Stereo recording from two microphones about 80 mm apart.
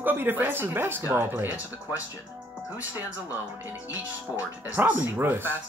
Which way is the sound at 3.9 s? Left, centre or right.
Right.